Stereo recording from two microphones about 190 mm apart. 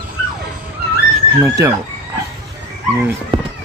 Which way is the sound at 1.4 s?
15° right (ahead or behind).